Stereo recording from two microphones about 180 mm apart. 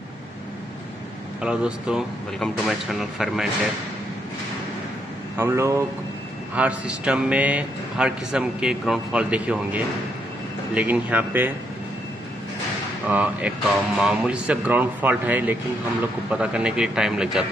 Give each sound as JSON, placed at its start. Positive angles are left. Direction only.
{"t": 1.4, "sound": "speech", "side_deg": -5}
{"t": 5.4, "sound": "a man's voice", "side_deg": -15}
{"t": 13.0, "sound": "a man's voice", "side_deg": -10}